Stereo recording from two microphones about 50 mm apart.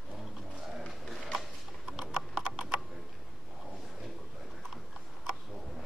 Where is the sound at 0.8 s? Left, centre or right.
Centre.